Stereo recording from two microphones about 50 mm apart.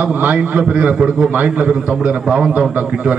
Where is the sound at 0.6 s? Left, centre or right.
Right.